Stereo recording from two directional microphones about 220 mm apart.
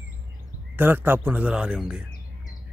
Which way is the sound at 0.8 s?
10° right (ahead or behind).